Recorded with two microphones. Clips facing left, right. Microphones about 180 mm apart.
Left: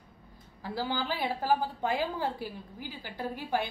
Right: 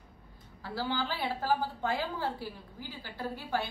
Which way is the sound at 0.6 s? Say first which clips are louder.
Left 1 dB; 15° left (ahead or behind).